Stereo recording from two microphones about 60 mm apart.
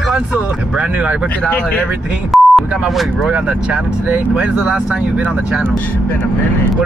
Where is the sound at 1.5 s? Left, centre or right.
Left.